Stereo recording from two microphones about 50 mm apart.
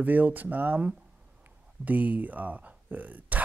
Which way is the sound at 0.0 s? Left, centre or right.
Right.